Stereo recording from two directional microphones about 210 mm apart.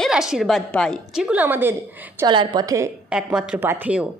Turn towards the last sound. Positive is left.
turn(degrees=-5)  # may be behind; listen again after turning